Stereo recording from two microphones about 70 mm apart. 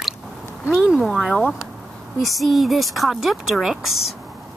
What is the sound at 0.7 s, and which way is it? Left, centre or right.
Speech, centre.